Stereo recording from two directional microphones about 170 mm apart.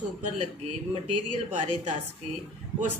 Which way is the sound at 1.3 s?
45° right (ahead or behind).